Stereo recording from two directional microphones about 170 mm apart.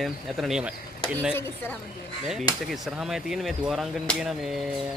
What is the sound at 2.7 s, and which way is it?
Speech, centre (ahead or behind).